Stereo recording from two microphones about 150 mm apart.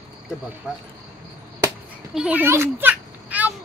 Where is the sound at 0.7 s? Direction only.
5° right (ahead or behind).